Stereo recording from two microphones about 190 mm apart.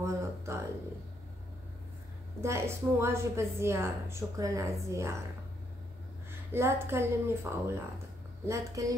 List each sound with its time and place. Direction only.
0.0 s a sound: 15° right (ahead or behind)
2.4 s a woman's voice: 15° right (ahead or behind)
6.5 s a woman's voice: 15° right (ahead or behind)